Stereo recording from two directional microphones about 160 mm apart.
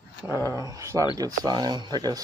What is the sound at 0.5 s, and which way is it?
Speech, 20° right (ahead or behind).